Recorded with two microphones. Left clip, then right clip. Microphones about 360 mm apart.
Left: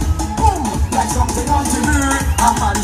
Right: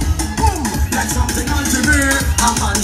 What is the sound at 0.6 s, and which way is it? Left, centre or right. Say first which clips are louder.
Music: left 2 dB; centre.